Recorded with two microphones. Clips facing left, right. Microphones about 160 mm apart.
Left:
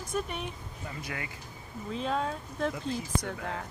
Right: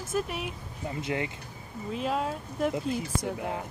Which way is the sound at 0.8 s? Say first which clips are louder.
Right 8 dB; 25° right (ahead or behind).